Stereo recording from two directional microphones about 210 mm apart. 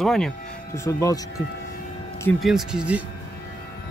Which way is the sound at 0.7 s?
15° left (ahead or behind).